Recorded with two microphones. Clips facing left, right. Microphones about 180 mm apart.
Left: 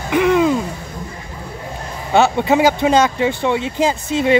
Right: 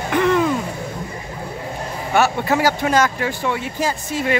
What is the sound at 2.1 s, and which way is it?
Speech, 20° left (ahead or behind).